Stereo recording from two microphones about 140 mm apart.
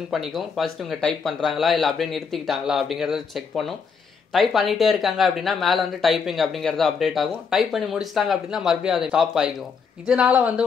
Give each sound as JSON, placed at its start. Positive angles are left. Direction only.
{"t": 0.1, "sound": "speech", "side_deg": 0}